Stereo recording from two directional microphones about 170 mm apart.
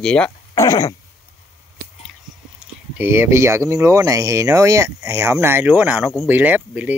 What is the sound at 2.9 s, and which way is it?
Speech, 15° right (ahead or behind).